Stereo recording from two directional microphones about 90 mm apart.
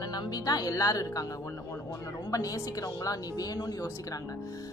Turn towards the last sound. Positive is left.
turn(degrees=45)  # may be behind; listen again after turning